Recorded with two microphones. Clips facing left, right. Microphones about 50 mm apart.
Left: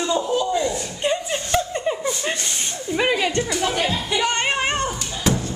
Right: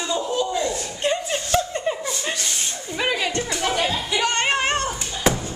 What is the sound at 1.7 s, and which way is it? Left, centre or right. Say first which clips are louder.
Chuckle: left 1 dB; centre.